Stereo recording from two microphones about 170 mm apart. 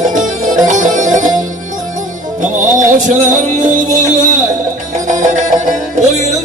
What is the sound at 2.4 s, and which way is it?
Music, 50° right (ahead or behind).